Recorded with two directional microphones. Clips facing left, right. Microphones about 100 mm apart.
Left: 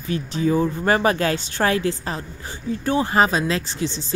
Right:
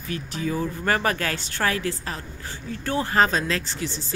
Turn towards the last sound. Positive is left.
turn(degrees=20)  # may be behind; listen again after turning